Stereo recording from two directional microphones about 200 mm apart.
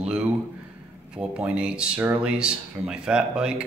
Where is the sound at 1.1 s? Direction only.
5° right (ahead or behind).